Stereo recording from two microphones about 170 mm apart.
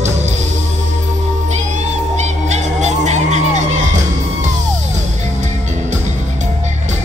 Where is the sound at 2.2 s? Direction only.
40° right (ahead or behind).